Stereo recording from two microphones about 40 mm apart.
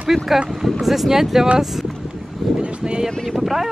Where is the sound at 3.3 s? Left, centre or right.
Centre.